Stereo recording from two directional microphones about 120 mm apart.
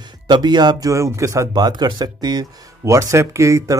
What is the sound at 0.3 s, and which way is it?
Speech, 35° right (ahead or behind).